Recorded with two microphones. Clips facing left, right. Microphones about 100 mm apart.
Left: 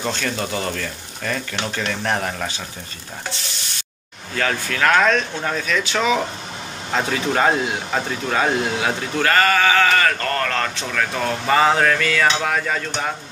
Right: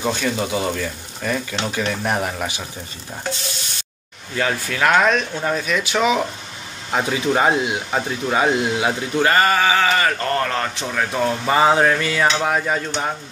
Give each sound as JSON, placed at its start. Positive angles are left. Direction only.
{"t": 0.0, "sound": "speech", "side_deg": -10}
{"t": 4.4, "sound": "speech", "side_deg": -15}